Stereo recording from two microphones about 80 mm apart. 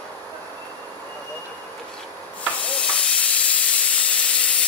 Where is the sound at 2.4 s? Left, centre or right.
Centre.